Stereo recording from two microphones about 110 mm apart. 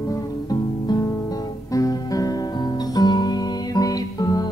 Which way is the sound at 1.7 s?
30° left (ahead or behind).